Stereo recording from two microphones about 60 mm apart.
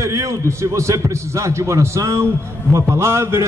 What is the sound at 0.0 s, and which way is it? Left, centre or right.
A man's voice, right.